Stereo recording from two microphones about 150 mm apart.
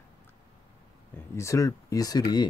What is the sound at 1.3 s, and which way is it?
Speech, 20° left (ahead or behind).